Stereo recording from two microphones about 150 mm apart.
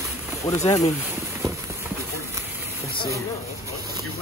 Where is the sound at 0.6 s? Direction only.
50° left (ahead or behind).